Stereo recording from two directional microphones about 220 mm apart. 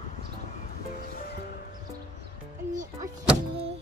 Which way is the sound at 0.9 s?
40° left (ahead or behind).